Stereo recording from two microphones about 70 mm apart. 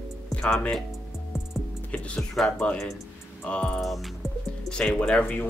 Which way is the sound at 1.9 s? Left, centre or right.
Centre.